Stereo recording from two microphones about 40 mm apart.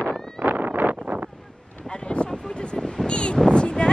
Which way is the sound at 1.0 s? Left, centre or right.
Right.